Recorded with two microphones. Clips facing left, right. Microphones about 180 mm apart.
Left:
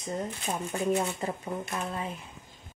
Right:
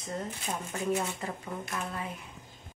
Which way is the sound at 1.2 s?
25° left (ahead or behind).